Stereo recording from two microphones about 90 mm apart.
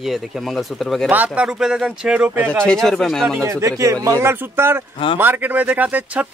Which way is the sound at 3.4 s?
35° right (ahead or behind).